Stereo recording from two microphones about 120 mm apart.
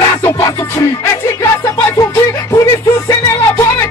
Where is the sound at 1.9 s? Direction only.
30° left (ahead or behind).